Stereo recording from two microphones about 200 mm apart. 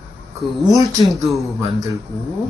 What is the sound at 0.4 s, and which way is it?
Speech, centre (ahead or behind).